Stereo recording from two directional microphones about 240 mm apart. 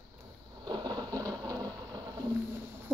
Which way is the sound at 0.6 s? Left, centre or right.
Centre.